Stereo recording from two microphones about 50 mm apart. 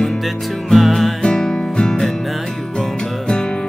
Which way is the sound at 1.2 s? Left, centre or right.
Centre.